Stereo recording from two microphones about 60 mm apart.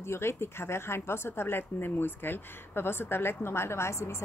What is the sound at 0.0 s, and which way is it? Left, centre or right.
Speech, left.